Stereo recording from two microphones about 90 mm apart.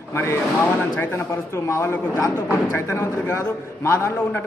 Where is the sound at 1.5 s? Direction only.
35° left (ahead or behind).